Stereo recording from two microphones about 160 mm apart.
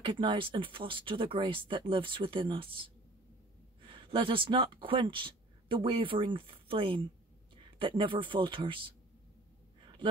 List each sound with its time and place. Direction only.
0.0 s speech: 30° right (ahead or behind)